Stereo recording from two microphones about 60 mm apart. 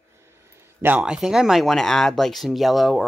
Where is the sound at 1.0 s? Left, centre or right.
Centre.